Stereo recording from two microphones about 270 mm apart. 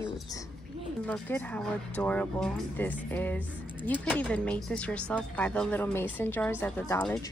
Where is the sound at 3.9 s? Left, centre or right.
Centre.